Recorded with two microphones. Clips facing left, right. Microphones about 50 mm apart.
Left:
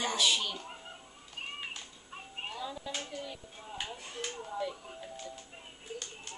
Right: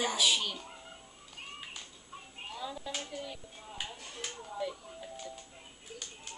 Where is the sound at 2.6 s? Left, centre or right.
Centre.